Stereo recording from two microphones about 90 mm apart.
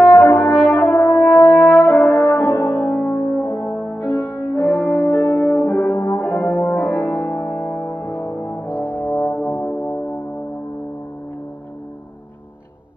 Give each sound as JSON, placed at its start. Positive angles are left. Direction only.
{"t": 0.1, "sound": "french horn", "side_deg": 25}
{"t": 1.4, "sound": "brass instrument", "side_deg": 25}
{"t": 1.9, "sound": "french horn", "side_deg": 30}
{"t": 7.2, "sound": "brass instrument", "side_deg": 25}